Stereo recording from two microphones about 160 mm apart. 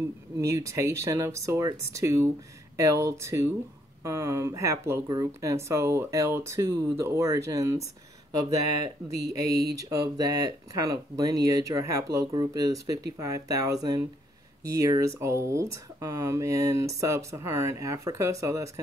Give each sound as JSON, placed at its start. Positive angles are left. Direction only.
{"t": 0.5, "sound": "speech", "side_deg": -20}